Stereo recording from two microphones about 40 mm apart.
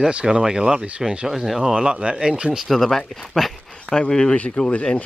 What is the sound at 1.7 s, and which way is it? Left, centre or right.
Speech, right.